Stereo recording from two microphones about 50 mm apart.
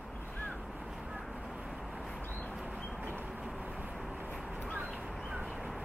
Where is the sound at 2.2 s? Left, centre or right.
Left.